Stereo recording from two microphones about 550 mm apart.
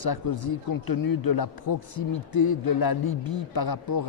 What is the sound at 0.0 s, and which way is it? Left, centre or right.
Speech, left.